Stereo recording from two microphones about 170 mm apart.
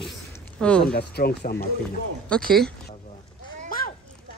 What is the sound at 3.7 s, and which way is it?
Children playing, 55° left (ahead or behind).